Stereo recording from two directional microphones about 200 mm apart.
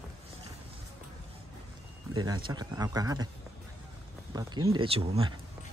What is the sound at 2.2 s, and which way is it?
Speech, 20° right (ahead or behind).